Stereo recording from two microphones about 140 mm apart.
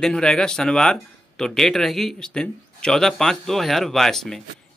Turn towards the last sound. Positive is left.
turn(degrees=5)  # may be behind; listen again after turning